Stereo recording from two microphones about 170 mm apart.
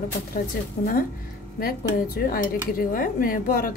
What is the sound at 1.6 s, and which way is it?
Speech, 60° left (ahead or behind).